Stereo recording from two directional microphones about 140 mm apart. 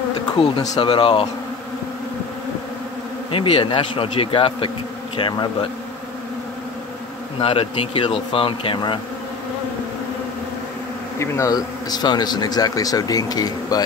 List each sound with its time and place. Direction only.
0.6 s speech: 35° left (ahead or behind)
3.3 s speech: 40° left (ahead or behind)
7.3 s speech: 40° left (ahead or behind)
11.1 s a man's voice: 20° left (ahead or behind)